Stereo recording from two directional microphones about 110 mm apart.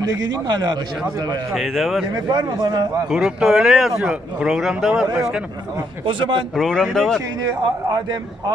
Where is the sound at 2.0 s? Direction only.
40° right (ahead or behind).